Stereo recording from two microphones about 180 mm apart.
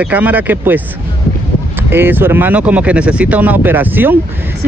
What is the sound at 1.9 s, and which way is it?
Speech, 10° right (ahead or behind).